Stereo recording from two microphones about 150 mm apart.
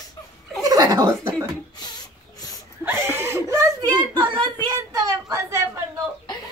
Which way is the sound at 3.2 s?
15° right (ahead or behind).